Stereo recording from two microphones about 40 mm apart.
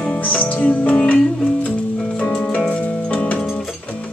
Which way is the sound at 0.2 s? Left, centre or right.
Left.